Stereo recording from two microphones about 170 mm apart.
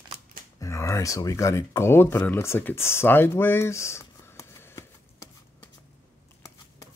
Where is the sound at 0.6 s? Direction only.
15° left (ahead or behind).